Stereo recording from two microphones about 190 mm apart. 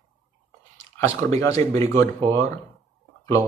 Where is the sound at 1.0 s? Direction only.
10° left (ahead or behind).